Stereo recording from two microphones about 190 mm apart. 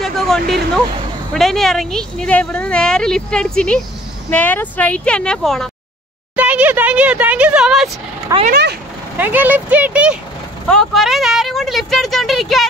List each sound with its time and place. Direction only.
0.0 s a sound: centre (ahead or behind)
1.3 s a woman's voice: centre (ahead or behind)
8.5 s speech: 60° right (ahead or behind)
9.2 s a woman's voice: 10° right (ahead or behind)